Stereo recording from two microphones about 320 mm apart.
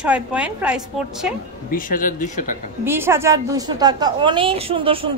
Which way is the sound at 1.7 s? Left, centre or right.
Left.